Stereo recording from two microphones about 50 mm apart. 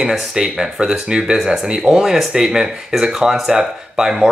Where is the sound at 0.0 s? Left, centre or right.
Centre.